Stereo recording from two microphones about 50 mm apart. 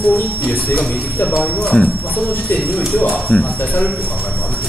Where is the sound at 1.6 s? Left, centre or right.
Centre.